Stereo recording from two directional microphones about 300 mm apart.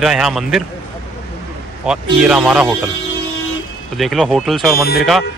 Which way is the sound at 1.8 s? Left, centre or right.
Centre.